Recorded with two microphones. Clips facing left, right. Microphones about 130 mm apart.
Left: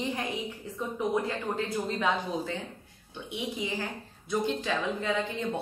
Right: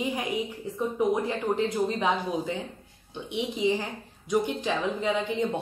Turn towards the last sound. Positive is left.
turn(degrees=-15)  # may be behind; listen again after turning